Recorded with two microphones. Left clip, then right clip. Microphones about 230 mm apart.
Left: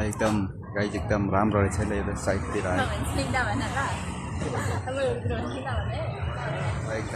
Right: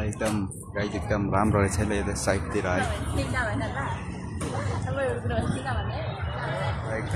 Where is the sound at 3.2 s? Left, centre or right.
Left.